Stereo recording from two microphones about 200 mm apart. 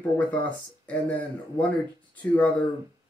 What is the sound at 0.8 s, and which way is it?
Speech, 5° left (ahead or behind).